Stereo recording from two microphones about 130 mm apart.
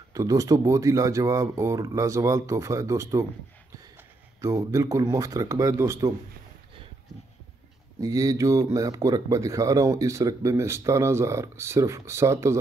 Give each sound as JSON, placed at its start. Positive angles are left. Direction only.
{"t": 0.1, "sound": "speech", "side_deg": -25}
{"t": 4.4, "sound": "speech", "side_deg": -25}
{"t": 8.0, "sound": "speech", "side_deg": -25}